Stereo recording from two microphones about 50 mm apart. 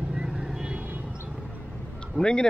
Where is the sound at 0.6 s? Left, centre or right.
Right.